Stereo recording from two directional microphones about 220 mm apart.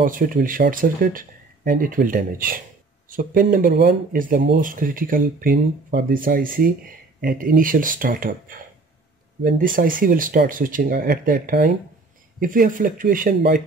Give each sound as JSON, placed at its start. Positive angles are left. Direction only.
{"t": 0.0, "sound": "speech", "side_deg": -40}